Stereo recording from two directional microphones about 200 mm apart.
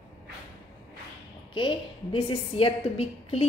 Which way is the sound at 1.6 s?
25° left (ahead or behind).